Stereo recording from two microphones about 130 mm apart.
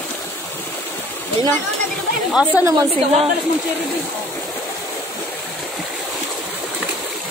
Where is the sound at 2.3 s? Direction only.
5° right (ahead or behind).